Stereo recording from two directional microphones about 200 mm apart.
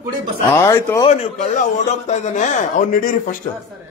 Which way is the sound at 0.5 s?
15° left (ahead or behind).